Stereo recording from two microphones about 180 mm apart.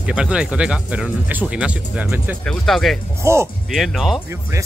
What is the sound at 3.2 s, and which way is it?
Speech, 15° right (ahead or behind).